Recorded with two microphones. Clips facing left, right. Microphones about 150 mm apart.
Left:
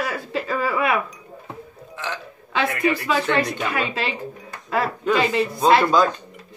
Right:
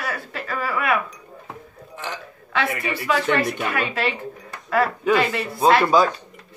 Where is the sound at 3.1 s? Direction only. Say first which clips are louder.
Even; 20° left (ahead or behind).